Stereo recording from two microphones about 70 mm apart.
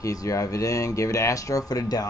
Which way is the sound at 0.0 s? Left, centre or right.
Left.